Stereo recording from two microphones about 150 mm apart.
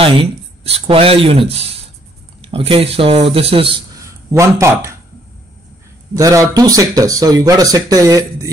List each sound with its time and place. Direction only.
0.0 s speech: 40° right (ahead or behind)
4.0 s speech: 20° right (ahead or behind)
6.1 s speech: 25° right (ahead or behind)